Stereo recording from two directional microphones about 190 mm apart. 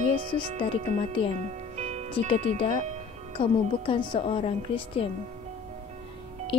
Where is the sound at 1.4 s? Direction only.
35° right (ahead or behind).